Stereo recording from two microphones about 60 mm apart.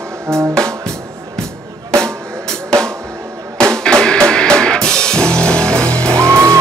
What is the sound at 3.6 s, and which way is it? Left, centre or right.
Drum kit, centre.